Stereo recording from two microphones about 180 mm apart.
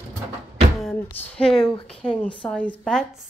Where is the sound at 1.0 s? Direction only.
10° left (ahead or behind).